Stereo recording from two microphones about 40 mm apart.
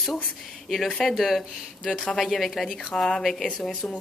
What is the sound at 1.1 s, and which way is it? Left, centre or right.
A woman's voice, centre.